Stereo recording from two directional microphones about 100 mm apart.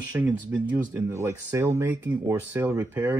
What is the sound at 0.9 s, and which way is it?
Speech, 25° right (ahead or behind).